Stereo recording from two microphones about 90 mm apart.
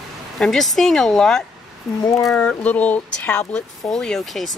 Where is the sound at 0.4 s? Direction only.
5° left (ahead or behind).